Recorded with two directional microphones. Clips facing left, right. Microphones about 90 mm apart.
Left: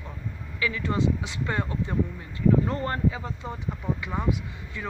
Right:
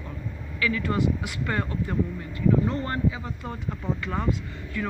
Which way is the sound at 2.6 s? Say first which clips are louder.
Even; 35° left (ahead or behind).